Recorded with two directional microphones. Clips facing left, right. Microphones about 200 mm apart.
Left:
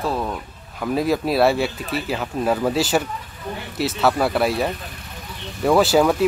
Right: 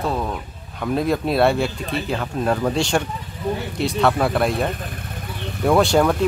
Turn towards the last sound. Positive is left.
turn(degrees=5)  # may be behind; listen again after turning